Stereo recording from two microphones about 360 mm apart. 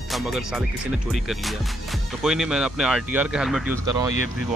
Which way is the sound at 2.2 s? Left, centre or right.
Centre.